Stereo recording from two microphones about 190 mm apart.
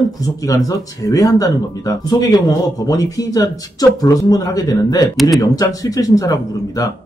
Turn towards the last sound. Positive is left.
turn(degrees=20)  # may be behind; listen again after turning